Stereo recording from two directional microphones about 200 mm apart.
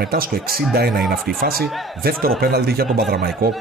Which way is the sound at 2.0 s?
50° right (ahead or behind).